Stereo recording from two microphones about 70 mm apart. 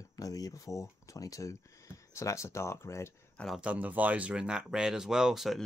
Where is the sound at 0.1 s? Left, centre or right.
Left.